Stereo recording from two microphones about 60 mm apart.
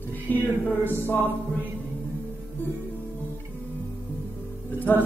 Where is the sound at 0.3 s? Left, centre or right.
Left.